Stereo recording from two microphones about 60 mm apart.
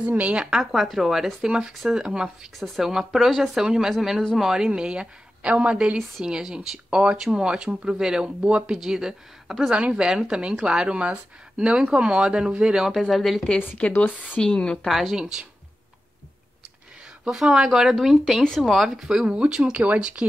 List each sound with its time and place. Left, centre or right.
0.0 s speech: right
8.7 s speech: centre
13.1 s speech: centre
13.7 s a woman's voice: left
14.9 s speech: centre
15.1 s speech: centre
17.2 s speech: centre